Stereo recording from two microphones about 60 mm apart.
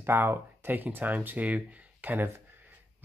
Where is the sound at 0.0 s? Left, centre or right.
Right.